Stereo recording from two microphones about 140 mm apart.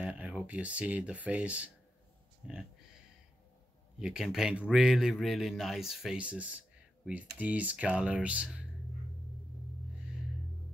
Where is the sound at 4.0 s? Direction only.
5° right (ahead or behind).